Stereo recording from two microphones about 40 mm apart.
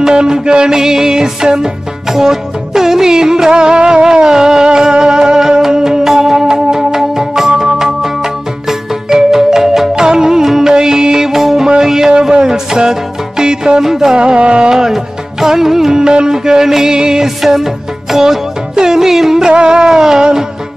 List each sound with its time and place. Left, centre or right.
0.0 s music: centre
12.1 s a sound: right
13.4 s music: centre
14.1 s music: right
19.5 s music: right